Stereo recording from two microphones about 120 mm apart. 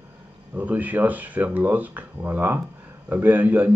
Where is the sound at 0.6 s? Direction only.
15° right (ahead or behind).